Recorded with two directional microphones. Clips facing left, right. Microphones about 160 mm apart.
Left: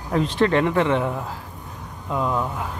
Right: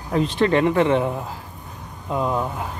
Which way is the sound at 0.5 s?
30° right (ahead or behind).